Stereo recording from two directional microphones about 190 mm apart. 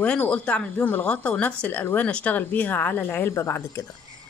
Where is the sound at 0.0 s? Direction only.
5° left (ahead or behind).